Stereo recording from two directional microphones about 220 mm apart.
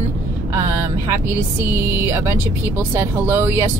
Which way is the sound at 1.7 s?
10° right (ahead or behind).